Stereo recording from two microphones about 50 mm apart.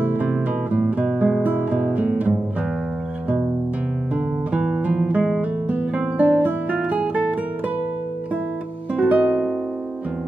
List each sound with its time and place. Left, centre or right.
0.0 s music: right
4.5 s guitar: right
8.9 s music: right